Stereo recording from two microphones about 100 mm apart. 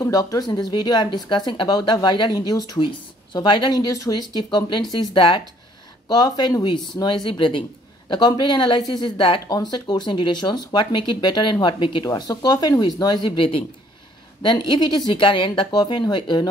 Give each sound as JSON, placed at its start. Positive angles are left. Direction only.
{"t": 0.0, "sound": "speech", "side_deg": 35}
{"t": 3.3, "sound": "speech", "side_deg": 50}
{"t": 6.0, "sound": "speech", "side_deg": 40}
{"t": 8.1, "sound": "speech", "side_deg": 50}
{"t": 9.5, "sound": "speech", "side_deg": 45}
{"t": 12.0, "sound": "speech", "side_deg": 40}
{"t": 13.4, "sound": "speech", "side_deg": 65}
{"t": 14.7, "sound": "speech", "side_deg": 45}
{"t": 15.1, "sound": "speech", "side_deg": 60}